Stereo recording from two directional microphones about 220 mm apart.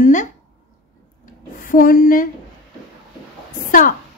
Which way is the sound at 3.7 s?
40° left (ahead or behind).